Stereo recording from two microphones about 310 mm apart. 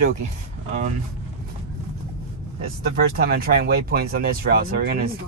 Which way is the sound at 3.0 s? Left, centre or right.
Right.